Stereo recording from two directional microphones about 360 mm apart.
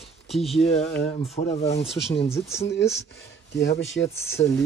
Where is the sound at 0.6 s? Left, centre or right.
Centre.